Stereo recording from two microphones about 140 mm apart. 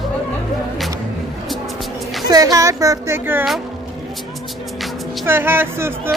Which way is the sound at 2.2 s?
25° right (ahead or behind).